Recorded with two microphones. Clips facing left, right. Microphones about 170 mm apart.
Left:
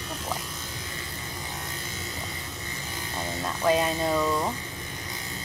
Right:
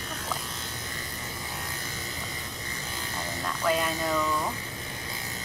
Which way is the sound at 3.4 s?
25° left (ahead or behind).